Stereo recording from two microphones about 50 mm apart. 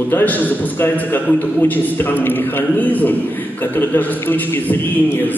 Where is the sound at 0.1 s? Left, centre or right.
Left.